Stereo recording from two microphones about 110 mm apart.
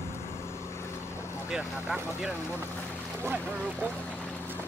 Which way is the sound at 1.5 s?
10° right (ahead or behind).